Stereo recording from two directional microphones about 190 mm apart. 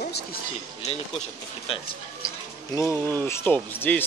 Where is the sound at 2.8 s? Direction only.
15° left (ahead or behind).